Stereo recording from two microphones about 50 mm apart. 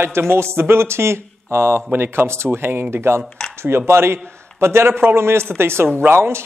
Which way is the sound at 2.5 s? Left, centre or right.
Right.